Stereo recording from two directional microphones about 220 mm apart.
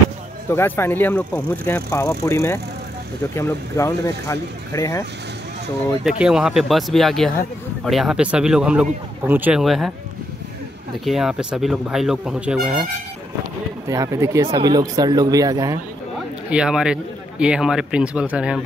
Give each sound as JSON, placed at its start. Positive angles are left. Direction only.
{"t": 0.5, "sound": "speech", "side_deg": 10}
{"t": 6.0, "sound": "speech", "side_deg": -5}
{"t": 11.1, "sound": "speech", "side_deg": 0}
{"t": 13.8, "sound": "speech", "side_deg": -15}
{"t": 16.4, "sound": "speech", "side_deg": -5}